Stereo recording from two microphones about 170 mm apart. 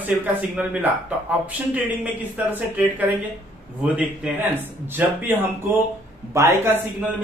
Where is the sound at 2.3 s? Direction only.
10° right (ahead or behind).